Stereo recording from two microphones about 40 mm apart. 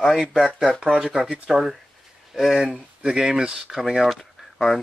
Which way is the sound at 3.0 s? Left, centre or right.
Centre.